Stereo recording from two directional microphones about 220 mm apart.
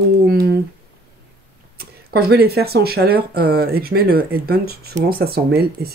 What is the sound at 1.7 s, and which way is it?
Speech, 45° right (ahead or behind).